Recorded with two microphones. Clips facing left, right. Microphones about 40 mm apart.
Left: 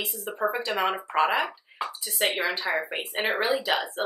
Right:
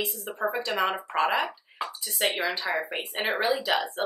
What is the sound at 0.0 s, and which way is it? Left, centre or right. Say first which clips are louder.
Speech: left 1 dB; centre.